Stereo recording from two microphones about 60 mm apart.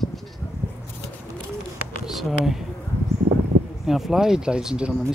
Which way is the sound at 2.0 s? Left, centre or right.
Centre.